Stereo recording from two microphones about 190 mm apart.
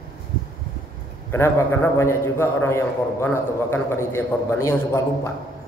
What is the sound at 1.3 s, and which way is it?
A man's voice, 10° left (ahead or behind).